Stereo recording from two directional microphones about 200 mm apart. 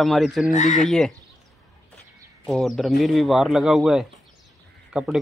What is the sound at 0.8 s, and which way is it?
Speech, centre (ahead or behind).